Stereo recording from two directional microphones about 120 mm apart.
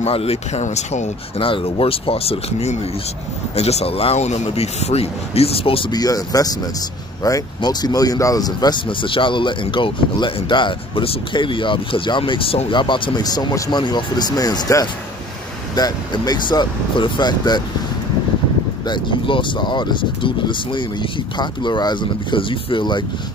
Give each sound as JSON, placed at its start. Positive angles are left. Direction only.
{"t": 0.0, "sound": "speech", "side_deg": 55}
{"t": 1.4, "sound": "a man's voice", "side_deg": 50}
{"t": 5.9, "sound": "speech", "side_deg": 30}
{"t": 18.9, "sound": "speech", "side_deg": 40}